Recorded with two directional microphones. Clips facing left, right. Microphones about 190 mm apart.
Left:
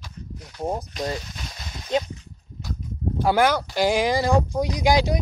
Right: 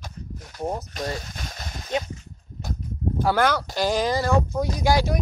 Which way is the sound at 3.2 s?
10° left (ahead or behind).